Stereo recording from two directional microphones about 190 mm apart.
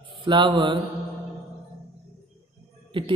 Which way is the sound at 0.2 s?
25° right (ahead or behind).